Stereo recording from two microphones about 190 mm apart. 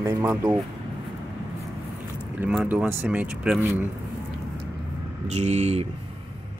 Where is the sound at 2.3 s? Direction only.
5° right (ahead or behind).